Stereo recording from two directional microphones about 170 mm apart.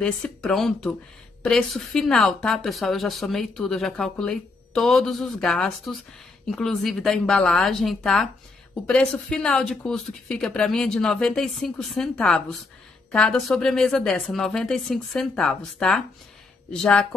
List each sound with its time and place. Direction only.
0.0 s a woman's voice: 5° left (ahead or behind)